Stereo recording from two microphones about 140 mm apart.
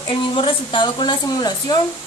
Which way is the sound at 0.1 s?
40° left (ahead or behind).